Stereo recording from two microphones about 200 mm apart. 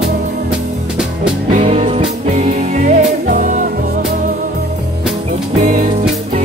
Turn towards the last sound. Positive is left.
turn(degrees=-45)  # may be behind; listen again after turning